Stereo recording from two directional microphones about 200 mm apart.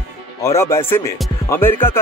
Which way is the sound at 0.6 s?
15° left (ahead or behind).